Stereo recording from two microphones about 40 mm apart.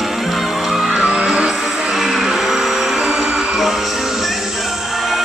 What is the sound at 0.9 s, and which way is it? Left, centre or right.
Music, right.